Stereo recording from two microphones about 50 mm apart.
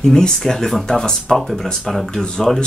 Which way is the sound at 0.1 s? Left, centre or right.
Centre.